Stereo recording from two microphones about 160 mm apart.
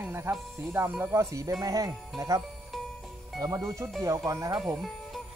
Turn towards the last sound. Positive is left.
turn(degrees=-20)  # may be behind; listen again after turning